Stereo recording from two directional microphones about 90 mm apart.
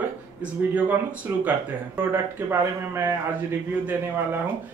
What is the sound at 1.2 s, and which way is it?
Speech, 25° right (ahead or behind).